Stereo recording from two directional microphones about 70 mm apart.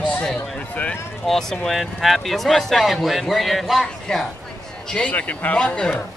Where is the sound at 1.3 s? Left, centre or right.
Centre.